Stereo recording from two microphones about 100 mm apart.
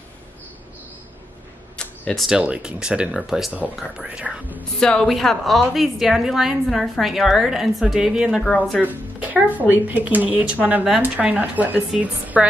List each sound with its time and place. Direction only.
1.8 s a sound: 10° left (ahead or behind)
2.2 s speech: 10° right (ahead or behind)
4.7 s a woman's voice: 10° left (ahead or behind)
8.8 s speech: 15° right (ahead or behind)